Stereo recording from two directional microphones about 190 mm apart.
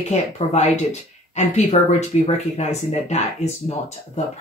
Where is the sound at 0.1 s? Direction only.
35° left (ahead or behind).